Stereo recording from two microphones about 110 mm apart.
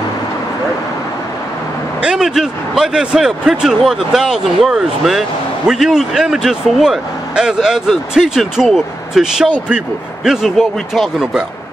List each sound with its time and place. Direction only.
2.0 s speech: 5° right (ahead or behind)